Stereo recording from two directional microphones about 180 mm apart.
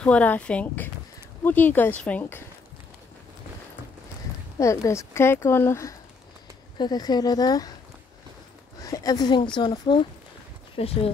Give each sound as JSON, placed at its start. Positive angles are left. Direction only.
{"t": 0.0, "sound": "speech", "side_deg": 5}
{"t": 4.6, "sound": "speech", "side_deg": 15}
{"t": 8.8, "sound": "speech", "side_deg": 20}